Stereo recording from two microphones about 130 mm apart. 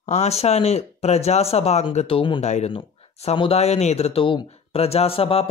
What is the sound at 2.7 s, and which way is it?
Speech, 45° left (ahead or behind).